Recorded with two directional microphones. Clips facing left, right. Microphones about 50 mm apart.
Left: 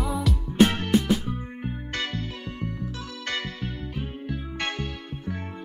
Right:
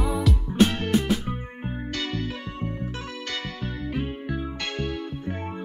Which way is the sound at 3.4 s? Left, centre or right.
Right.